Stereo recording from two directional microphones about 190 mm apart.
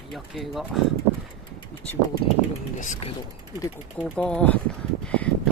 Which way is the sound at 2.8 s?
40° left (ahead or behind).